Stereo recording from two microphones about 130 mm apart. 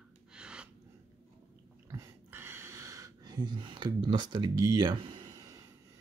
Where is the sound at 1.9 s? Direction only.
20° right (ahead or behind).